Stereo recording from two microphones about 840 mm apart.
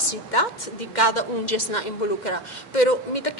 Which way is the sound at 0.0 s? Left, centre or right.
Left.